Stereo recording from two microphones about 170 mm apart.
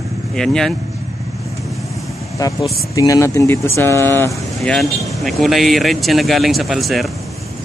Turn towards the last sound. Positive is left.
turn(degrees=0)  # may be behind; listen again after turning